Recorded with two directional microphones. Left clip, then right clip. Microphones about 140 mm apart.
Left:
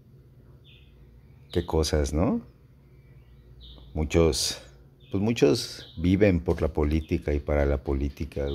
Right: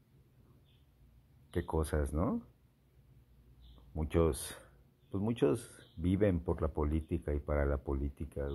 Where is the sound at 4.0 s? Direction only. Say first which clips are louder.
Left 10 dB; 15° left (ahead or behind).